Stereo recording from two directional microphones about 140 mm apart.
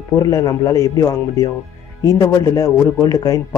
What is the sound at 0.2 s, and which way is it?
Speech, 25° left (ahead or behind).